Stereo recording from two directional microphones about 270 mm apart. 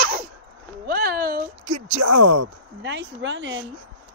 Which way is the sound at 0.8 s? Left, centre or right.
Right.